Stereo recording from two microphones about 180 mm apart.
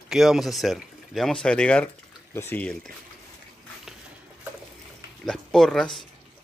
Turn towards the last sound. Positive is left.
turn(degrees=5)  # may be behind; listen again after turning